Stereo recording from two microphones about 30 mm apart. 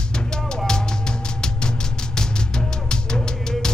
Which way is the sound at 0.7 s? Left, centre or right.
Left.